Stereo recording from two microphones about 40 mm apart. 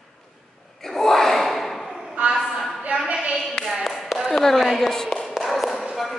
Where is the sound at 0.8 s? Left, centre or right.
Centre.